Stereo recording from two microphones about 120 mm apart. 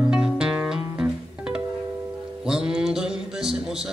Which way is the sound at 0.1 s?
5° right (ahead or behind).